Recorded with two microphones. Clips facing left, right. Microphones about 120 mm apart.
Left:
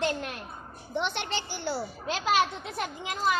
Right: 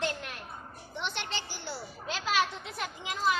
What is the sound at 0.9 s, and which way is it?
A child's voice, 60° left (ahead or behind).